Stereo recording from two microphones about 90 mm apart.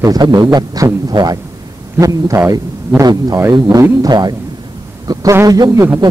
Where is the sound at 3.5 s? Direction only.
60° right (ahead or behind).